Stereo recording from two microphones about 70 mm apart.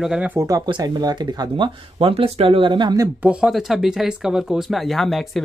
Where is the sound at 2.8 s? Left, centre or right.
Right.